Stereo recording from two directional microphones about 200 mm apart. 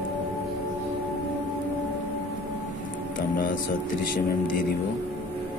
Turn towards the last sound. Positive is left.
turn(degrees=45)  # may be behind; listen again after turning